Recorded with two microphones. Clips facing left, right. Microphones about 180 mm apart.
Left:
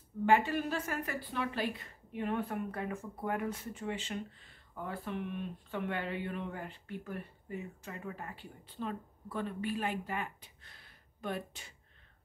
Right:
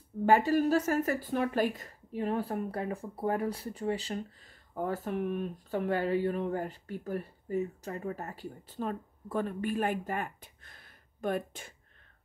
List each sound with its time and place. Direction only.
0.2 s a woman's voice: 40° right (ahead or behind)